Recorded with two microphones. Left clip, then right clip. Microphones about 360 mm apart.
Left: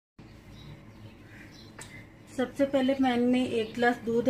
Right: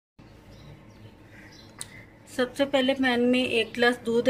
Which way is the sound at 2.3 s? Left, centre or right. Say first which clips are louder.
Right 3 dB; right.